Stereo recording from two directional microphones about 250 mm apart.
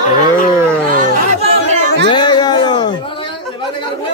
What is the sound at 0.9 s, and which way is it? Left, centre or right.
Speech, right.